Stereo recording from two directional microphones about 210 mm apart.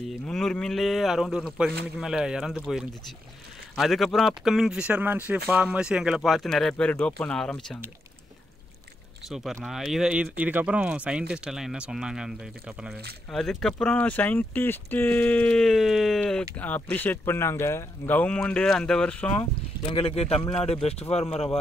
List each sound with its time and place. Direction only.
0.3 s speech: 5° left (ahead or behind)
9.3 s speech: centre (ahead or behind)
19.9 s a man's voice: 25° left (ahead or behind)